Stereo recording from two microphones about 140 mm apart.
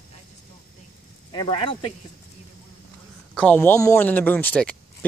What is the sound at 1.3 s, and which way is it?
Speech, 40° left (ahead or behind).